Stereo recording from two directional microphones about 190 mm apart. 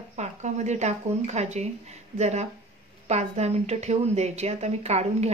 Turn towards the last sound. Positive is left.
turn(degrees=-35)  # may be behind; listen again after turning